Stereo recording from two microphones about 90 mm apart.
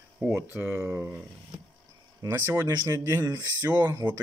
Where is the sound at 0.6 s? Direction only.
20° right (ahead or behind).